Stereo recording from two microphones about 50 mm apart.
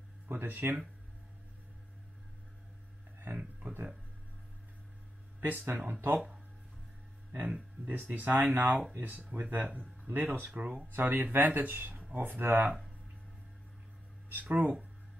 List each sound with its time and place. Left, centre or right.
0.3 s speech: right
3.3 s speech: right
5.4 s speech: right
7.4 s speech: right
7.9 s speech: right
9.1 s speech: right
14.3 s speech: right